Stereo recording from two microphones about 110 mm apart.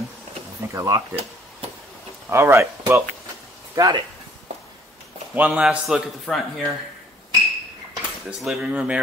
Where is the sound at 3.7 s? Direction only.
35° right (ahead or behind).